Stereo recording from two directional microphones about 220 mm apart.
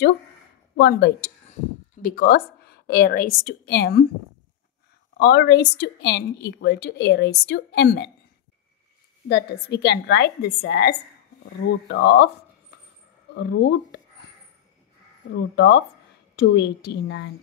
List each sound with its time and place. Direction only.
0.7 s a woman's voice: 50° left (ahead or behind)
5.1 s a woman's voice: 50° left (ahead or behind)
9.3 s a woman's voice: 50° left (ahead or behind)
13.3 s speech: 50° left (ahead or behind)
15.3 s a woman's voice: 50° left (ahead or behind)